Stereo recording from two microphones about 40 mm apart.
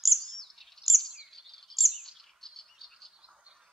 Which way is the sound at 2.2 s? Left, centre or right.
Centre.